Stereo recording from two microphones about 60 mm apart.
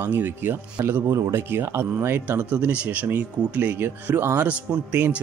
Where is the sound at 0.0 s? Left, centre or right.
Right.